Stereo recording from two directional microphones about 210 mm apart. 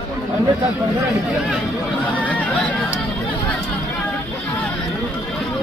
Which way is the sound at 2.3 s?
5° left (ahead or behind).